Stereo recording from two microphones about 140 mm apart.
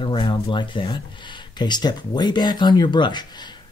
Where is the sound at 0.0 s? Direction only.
35° left (ahead or behind).